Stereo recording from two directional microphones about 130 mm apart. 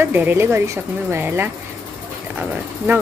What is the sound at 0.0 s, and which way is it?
Speech, 15° right (ahead or behind).